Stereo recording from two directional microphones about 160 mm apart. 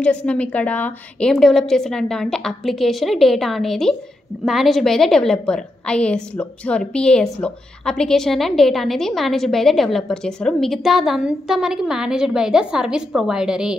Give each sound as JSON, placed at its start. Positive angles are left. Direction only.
{"t": 0.0, "sound": "a woman's voice", "side_deg": 5}